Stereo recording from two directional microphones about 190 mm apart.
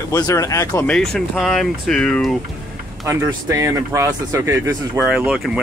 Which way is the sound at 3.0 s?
15° right (ahead or behind).